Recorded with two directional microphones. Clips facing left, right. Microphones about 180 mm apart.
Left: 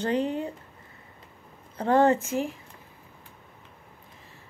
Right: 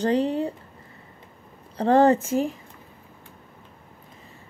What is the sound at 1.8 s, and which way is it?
Speech, 35° right (ahead or behind).